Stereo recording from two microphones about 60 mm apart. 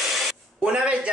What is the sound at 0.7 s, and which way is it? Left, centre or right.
Speech, centre.